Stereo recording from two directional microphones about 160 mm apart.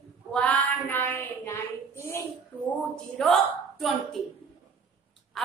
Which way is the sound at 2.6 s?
5° left (ahead or behind).